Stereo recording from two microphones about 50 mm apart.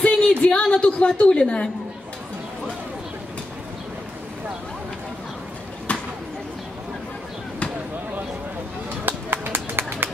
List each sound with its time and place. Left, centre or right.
0.0 s a woman's voice: left
5.9 s a sound: left
9.0 s music: right